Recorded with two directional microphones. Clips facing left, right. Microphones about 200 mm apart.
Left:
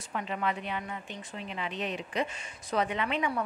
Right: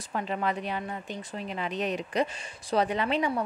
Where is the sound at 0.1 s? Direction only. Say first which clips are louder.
Right 3 dB; 35° right (ahead or behind).